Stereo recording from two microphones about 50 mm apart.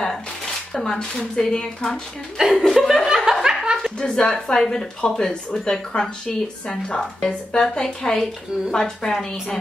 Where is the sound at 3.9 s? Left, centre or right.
Centre.